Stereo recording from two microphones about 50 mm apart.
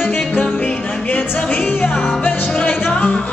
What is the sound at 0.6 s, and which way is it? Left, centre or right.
Music, left.